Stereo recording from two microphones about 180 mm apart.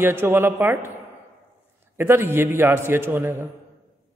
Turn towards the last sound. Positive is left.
turn(degrees=-15)  # may be behind; listen again after turning